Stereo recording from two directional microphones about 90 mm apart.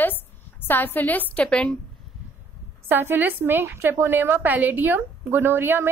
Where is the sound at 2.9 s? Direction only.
20° right (ahead or behind).